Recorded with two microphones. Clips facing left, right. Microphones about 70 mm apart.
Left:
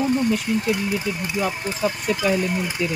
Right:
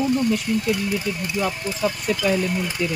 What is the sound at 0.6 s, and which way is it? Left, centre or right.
Speech, centre.